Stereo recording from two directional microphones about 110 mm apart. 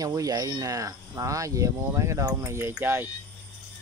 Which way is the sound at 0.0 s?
35° right (ahead or behind).